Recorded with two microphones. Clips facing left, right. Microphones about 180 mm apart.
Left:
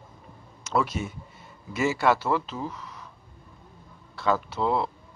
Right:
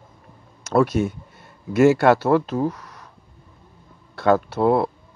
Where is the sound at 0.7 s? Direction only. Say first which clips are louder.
Right 8 dB; 55° right (ahead or behind).